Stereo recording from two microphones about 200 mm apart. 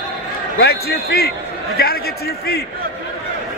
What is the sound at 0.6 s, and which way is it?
A man's voice, 50° left (ahead or behind).